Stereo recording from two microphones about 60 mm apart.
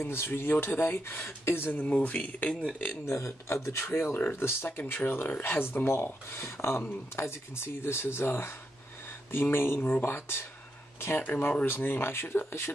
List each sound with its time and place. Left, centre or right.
0.0 s speech: left
3.1 s speech: left